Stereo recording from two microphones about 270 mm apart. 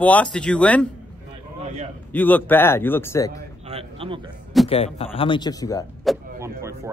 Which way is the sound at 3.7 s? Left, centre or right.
Right.